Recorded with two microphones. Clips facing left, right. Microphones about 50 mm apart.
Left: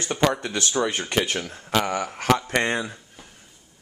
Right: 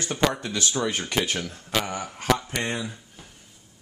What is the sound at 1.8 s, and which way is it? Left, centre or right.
Speech, left.